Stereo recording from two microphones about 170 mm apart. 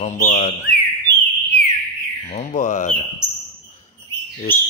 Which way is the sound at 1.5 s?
90° left.